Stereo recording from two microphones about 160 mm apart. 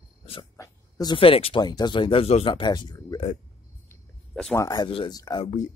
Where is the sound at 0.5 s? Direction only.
20° left (ahead or behind).